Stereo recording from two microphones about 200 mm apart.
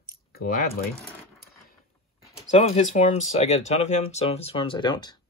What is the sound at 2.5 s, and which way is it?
Speech, 35° left (ahead or behind).